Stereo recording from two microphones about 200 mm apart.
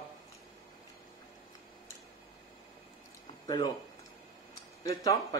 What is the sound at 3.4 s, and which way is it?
Speech, 20° left (ahead or behind).